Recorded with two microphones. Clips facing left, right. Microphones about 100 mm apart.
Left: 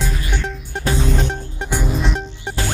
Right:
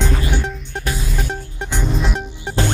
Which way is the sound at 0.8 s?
30° left (ahead or behind).